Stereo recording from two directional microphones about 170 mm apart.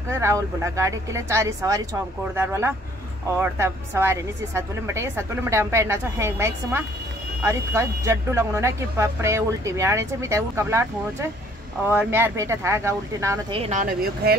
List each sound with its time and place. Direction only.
0.1 s speech: 15° right (ahead or behind)
13.5 s speech: 35° right (ahead or behind)
13.7 s speech: 60° right (ahead or behind)